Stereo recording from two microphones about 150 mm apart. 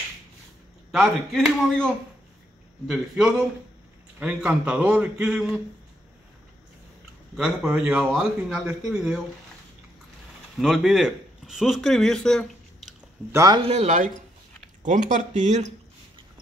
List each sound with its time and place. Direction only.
1.3 s a man's voice: centre (ahead or behind)
2.9 s a man's voice: centre (ahead or behind)
7.3 s a man's voice: 5° right (ahead or behind)
10.6 s speech: centre (ahead or behind)
13.3 s a man's voice: 20° right (ahead or behind)
13.6 s speech: 45° right (ahead or behind)